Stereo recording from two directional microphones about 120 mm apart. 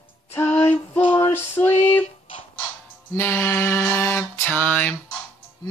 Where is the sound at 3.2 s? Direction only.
20° left (ahead or behind).